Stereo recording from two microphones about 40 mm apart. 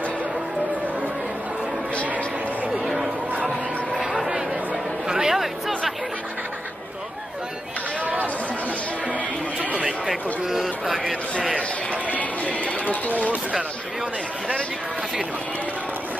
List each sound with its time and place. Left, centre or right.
4.0 s chatter: centre
8.0 s chatter: right
10.0 s a sound: centre
12.1 s run: left